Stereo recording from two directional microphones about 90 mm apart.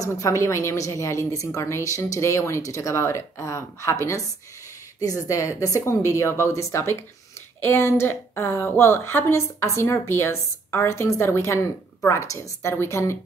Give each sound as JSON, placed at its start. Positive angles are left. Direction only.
{"t": 0.0, "sound": "a woman's voice", "side_deg": 35}